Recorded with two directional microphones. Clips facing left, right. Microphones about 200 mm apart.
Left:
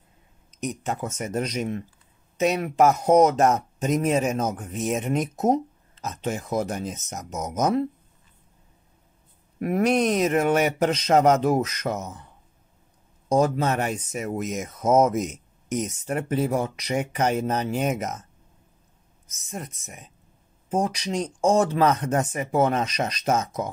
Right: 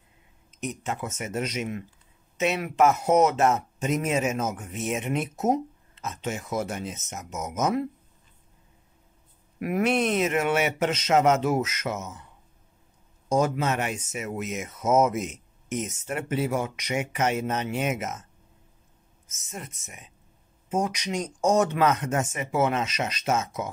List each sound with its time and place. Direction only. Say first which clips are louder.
0.7 s speech: left 3 dB; 35° left (ahead or behind)
4.6 s speech: left 3 dB; centre (ahead or behind)
4.9 s speech: left 3 dB; 40° left (ahead or behind)
9.6 s speech: left 3 dB; 40° left (ahead or behind)
13.3 s speech: left 3 dB; 35° left (ahead or behind)
19.2 s speech: left 4 dB; centre (ahead or behind)
20.7 s speech: left 2 dB; 35° left (ahead or behind)